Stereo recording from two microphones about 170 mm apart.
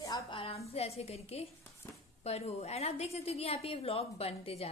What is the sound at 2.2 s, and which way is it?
A woman's voice, 40° left (ahead or behind).